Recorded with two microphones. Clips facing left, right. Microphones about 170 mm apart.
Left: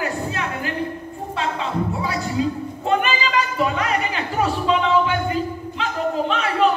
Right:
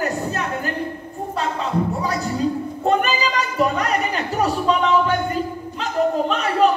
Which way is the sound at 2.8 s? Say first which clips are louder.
Right 1 dB; 40° right (ahead or behind).